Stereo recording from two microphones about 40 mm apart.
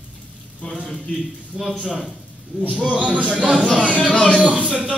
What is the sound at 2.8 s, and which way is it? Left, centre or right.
Speech, right.